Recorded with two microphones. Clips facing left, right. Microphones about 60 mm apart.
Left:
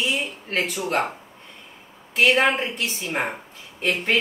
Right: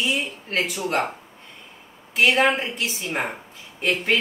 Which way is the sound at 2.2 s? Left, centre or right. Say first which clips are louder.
Even; centre.